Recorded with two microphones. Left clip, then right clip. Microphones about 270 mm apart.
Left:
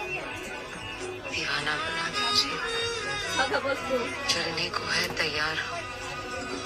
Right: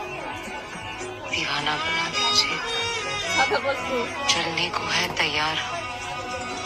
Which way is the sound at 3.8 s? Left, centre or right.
Centre.